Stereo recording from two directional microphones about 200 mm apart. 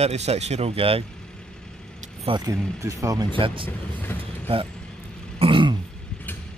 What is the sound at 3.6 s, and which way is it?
Speech, 10° left (ahead or behind).